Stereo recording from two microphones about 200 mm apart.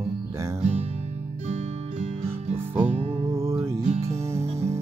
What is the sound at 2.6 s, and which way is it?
Music, 10° right (ahead or behind).